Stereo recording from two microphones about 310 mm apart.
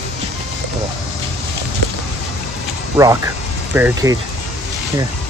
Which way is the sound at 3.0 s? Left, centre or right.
Centre.